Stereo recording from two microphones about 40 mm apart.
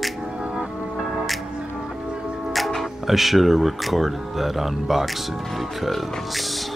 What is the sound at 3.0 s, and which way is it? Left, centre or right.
Speech, centre.